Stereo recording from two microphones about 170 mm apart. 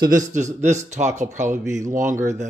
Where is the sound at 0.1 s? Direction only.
45° right (ahead or behind).